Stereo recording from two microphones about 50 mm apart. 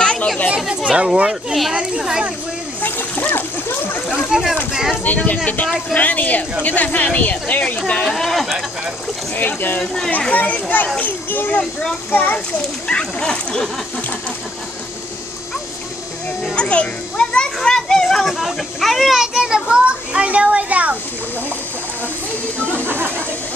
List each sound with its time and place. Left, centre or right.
0.0 s chatter: left
0.7 s a sound: centre
1.7 s a child's voice: centre
2.8 s a child's voice: left
4.3 s a child's voice: centre
4.9 s speech: left
8.0 s speech: centre
9.3 s speech: left
12.8 s speech: centre
16.5 s a child's voice: left
17.6 s children playing: centre
19.1 s a child's voice: centre
19.9 s a child's voice: right
22.8 s a sound: right